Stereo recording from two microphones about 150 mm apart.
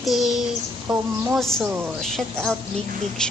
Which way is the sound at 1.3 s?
Centre (ahead or behind).